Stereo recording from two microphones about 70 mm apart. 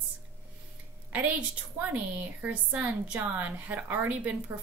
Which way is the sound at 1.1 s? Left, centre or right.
Right.